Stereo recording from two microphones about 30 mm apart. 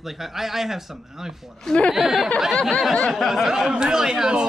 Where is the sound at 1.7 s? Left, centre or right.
Centre.